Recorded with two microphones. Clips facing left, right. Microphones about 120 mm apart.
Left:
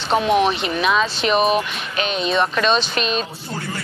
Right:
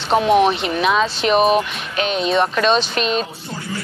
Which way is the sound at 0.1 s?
25° right (ahead or behind).